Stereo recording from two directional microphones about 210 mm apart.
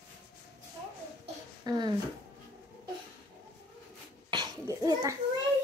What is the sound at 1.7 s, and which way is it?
Speech, 20° right (ahead or behind).